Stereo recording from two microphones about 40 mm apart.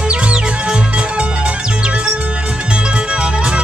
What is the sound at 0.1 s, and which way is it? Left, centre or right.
Music, right.